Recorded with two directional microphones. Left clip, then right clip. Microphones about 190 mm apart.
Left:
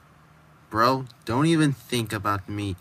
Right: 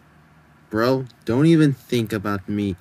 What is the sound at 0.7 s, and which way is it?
Speech, 20° right (ahead or behind).